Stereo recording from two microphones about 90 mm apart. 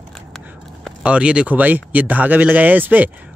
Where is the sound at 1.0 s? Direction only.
10° right (ahead or behind).